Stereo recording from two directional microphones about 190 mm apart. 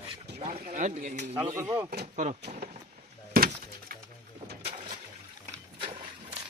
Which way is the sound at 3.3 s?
50° right (ahead or behind).